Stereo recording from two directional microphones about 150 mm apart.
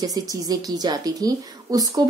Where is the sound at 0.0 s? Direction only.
25° right (ahead or behind).